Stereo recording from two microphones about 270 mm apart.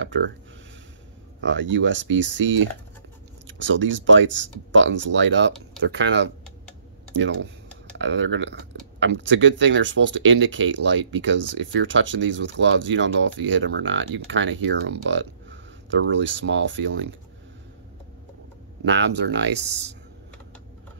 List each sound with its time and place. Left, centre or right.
0.0 s a sound: right
1.4 s speech: right
8.0 s speech: right
18.9 s speech: right